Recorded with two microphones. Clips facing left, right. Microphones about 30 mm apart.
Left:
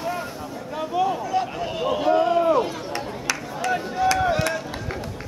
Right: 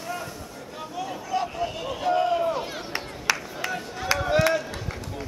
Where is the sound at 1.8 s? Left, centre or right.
Centre.